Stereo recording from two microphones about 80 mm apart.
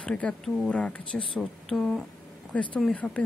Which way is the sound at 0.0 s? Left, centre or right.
Centre.